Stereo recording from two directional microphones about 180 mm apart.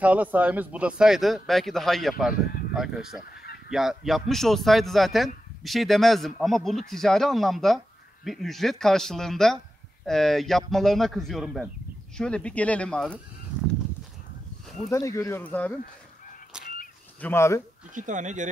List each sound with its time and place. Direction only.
0.0 s speech: 10° right (ahead or behind)
14.9 s speech: 15° left (ahead or behind)
16.5 s fowl: 5° right (ahead or behind)
17.2 s speech: 15° left (ahead or behind)
17.9 s speech: 45° right (ahead or behind)